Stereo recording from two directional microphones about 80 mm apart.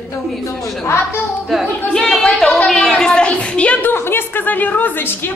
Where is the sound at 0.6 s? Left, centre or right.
Centre.